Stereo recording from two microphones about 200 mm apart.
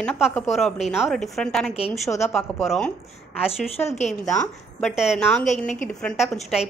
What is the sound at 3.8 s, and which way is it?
Speech, 35° left (ahead or behind).